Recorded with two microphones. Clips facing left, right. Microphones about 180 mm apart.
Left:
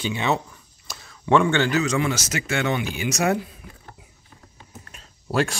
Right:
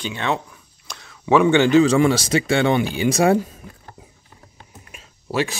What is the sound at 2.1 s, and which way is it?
Speech, 30° right (ahead or behind).